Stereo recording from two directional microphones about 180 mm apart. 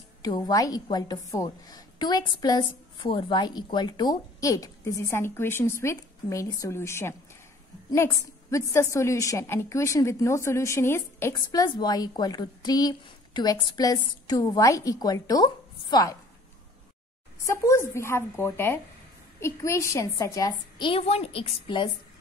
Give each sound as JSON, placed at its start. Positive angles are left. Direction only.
{"t": 0.2, "sound": "a woman's voice", "side_deg": 20}
{"t": 17.4, "sound": "a woman's voice", "side_deg": 15}